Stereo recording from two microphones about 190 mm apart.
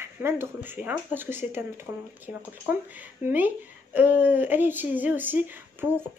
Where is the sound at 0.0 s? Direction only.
10° right (ahead or behind).